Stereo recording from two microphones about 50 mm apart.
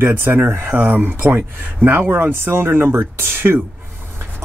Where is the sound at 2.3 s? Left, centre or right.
Right.